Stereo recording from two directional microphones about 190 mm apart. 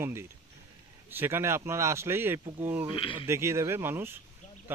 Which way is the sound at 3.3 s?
15° right (ahead or behind).